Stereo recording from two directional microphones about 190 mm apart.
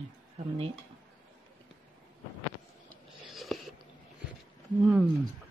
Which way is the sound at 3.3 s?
Centre (ahead or behind).